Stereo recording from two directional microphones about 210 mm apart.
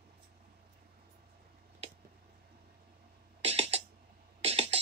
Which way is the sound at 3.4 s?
30° right (ahead or behind).